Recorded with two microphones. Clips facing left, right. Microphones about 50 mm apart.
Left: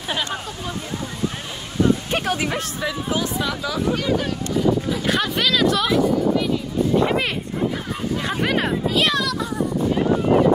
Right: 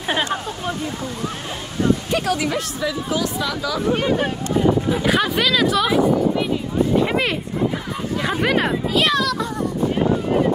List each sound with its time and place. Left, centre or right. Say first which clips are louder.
2.0 s speech: right 2 dB; left
3.9 s speech: right 4 dB; right
5.0 s speech: right 2 dB; centre
7.1 s a sound: right 1 dB; centre
8.2 s speech: right 4 dB; centre